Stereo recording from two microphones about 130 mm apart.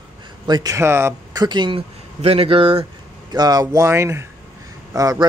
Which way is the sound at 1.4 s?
35° right (ahead or behind).